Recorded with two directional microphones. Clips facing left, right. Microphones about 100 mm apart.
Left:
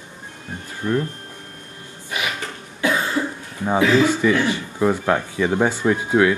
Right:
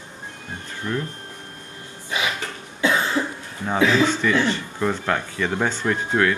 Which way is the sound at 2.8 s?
25° right (ahead or behind).